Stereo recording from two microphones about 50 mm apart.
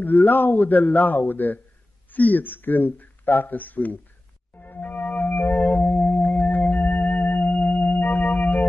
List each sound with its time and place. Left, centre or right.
0.0 s speech: left
4.6 s music: left